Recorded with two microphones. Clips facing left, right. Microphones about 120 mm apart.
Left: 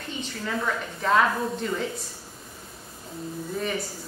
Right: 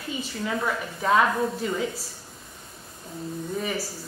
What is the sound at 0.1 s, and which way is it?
A woman's voice, 5° right (ahead or behind).